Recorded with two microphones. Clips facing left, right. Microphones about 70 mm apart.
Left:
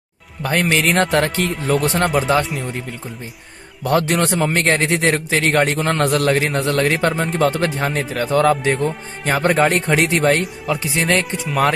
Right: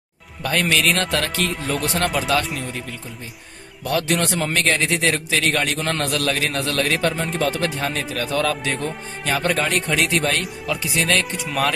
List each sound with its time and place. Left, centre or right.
0.4 s a man's voice: left
1.7 s speech: left
2.1 s a man's voice: left
2.4 s speech: centre
3.8 s a man's voice: left
7.7 s a man's voice: left